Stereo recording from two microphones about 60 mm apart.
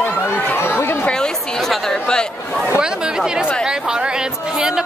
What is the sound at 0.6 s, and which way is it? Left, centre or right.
Speech, left.